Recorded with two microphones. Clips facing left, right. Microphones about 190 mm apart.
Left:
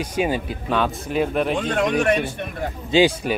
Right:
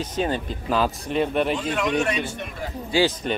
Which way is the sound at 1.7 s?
55° left (ahead or behind).